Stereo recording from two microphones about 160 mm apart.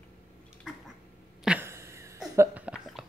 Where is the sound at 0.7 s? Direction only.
5° right (ahead or behind).